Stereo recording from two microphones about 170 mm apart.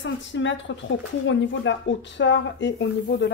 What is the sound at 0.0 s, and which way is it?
A woman's voice, 90° left.